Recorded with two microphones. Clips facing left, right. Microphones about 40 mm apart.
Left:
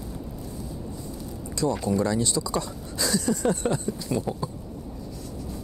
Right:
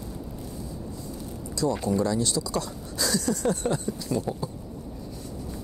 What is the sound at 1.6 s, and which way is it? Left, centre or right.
Speech, left.